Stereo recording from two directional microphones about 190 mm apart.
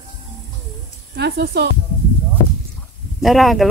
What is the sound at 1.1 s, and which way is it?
Speech, 60° right (ahead or behind).